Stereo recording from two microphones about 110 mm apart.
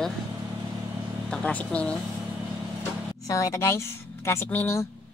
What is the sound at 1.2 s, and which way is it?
Speech, 10° left (ahead or behind).